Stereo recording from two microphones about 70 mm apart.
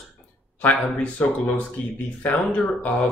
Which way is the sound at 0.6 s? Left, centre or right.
Left.